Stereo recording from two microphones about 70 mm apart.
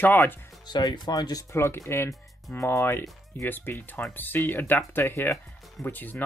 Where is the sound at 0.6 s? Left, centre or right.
Left.